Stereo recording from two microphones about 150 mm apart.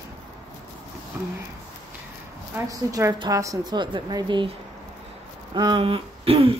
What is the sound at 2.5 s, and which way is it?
A woman's voice, 20° right (ahead or behind).